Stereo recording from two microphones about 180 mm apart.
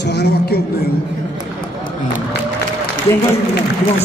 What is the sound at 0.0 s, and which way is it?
Speech, 70° left (ahead or behind).